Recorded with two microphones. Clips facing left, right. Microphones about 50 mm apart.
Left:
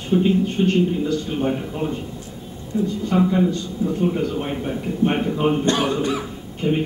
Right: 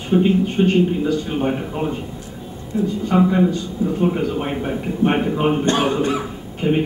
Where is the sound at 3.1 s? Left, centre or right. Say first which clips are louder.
Right 3 dB; centre.